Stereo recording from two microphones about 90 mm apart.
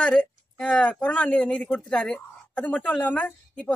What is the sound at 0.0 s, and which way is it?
Speech, 10° left (ahead or behind).